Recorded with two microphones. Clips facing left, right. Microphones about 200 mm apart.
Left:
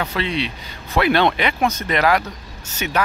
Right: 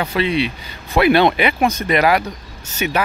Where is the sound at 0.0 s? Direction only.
10° right (ahead or behind).